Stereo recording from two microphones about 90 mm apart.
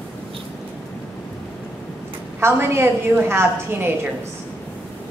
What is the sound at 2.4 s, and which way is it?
A woman's voice, 25° right (ahead or behind).